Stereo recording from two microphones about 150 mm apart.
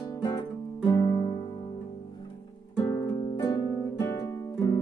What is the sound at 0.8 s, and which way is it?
Music, 30° left (ahead or behind).